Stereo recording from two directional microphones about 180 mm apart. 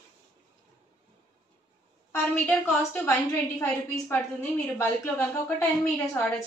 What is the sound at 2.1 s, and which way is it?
A woman's voice, 10° left (ahead or behind).